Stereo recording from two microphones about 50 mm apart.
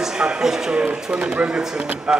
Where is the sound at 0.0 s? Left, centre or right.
Centre.